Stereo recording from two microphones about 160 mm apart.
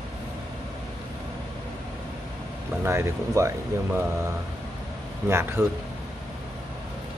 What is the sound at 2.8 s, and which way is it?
Speech, 15° right (ahead or behind).